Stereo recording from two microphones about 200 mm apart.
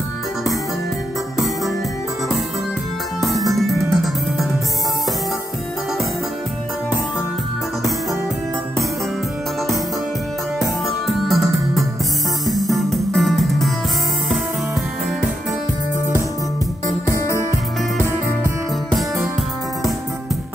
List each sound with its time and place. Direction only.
3.2 s music: centre (ahead or behind)
11.2 s music: centre (ahead or behind)
16.8 s music: 15° left (ahead or behind)